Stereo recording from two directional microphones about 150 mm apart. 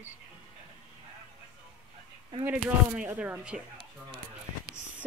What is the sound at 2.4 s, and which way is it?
A woman's voice, 10° right (ahead or behind).